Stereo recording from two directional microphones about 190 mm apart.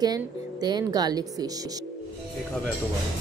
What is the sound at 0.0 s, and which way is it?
A woman's voice, 20° right (ahead or behind).